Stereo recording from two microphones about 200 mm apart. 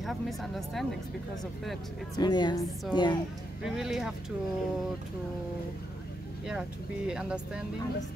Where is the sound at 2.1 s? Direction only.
20° left (ahead or behind).